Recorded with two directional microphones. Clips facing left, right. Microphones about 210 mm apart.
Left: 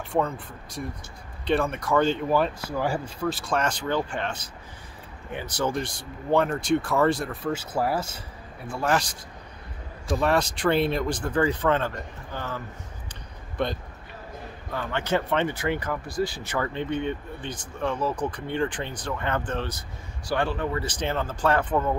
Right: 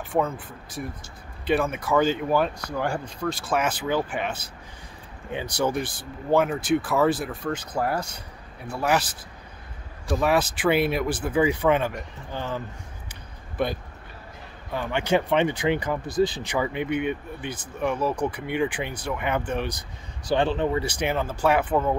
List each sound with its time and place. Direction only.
0.1 s speech: 5° right (ahead or behind); by 20.8 s 20° right (ahead or behind)
20.8 s speech: 10° right (ahead or behind)